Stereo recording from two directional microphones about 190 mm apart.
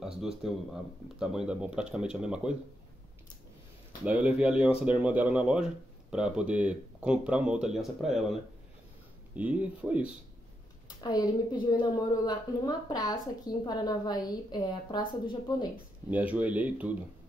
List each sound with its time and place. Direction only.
0.0 s a sound: centre (ahead or behind)
1.2 s speech: 5° right (ahead or behind)
4.0 s speech: 5° right (ahead or behind)
11.0 s a woman's voice: 20° left (ahead or behind)
16.1 s speech: 10° right (ahead or behind)